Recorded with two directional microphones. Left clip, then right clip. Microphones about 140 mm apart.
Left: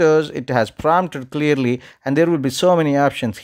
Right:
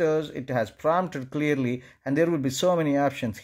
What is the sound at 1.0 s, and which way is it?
Speech, 25° left (ahead or behind).